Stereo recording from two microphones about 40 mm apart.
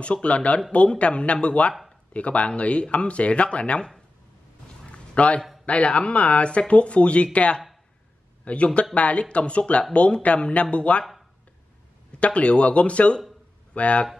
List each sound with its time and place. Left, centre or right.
0.0 s speech: left
4.9 s a sound: left
5.7 s speech: left
12.1 s speech: left